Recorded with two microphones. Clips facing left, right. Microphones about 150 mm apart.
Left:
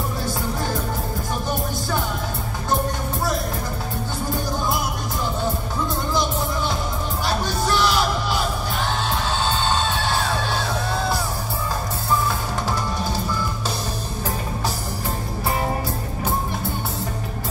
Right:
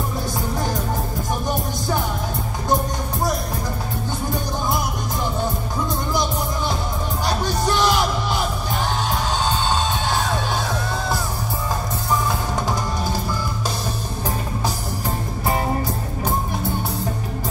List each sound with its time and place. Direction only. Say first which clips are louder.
7.4 s music: right 3 dB; 20° right (ahead or behind)